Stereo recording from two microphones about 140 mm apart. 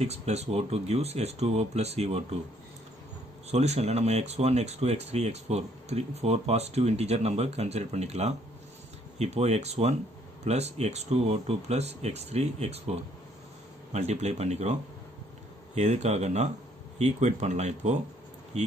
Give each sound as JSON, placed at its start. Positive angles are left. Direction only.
{"t": 0.0, "sound": "speech", "side_deg": -50}
{"t": 3.4, "sound": "speech", "side_deg": -50}